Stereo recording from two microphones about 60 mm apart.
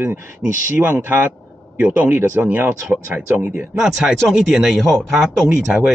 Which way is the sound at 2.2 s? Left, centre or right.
Right.